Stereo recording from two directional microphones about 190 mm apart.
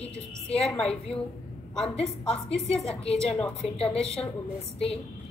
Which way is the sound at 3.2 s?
5° left (ahead or behind).